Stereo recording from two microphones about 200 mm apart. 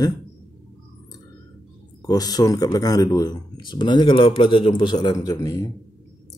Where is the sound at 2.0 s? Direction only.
20° left (ahead or behind).